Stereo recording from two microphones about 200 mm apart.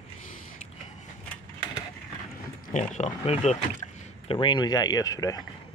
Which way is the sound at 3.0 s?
35° left (ahead or behind).